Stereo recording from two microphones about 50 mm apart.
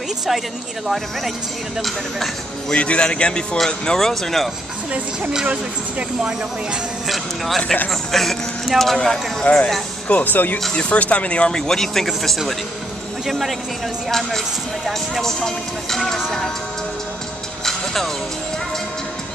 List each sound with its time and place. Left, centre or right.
0.8 s speech: centre
2.7 s a man's voice: left; by 4.5 s centre
5.5 s speech: right
7.1 s speech: centre
9.4 s a man's voice: left
10.0 s speech: left
10.7 s a man's voice: centre
11.5 s speech: centre
14.9 s speech: centre
17.6 s music: centre